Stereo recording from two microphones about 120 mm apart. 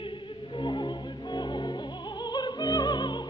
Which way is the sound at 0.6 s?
40° left (ahead or behind).